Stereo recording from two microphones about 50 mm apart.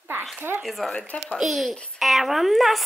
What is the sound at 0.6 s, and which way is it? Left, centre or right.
Speech, centre.